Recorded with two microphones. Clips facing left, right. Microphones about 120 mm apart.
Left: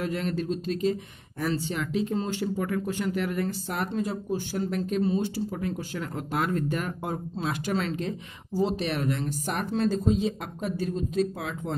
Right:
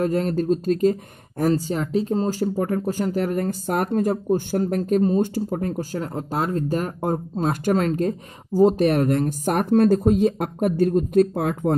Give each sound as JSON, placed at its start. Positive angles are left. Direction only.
{"t": 0.0, "sound": "speech", "side_deg": -40}